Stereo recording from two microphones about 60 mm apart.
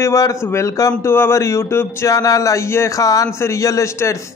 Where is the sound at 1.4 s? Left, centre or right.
Left.